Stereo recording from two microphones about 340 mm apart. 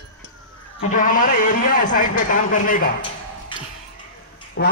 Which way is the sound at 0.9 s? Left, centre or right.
Left.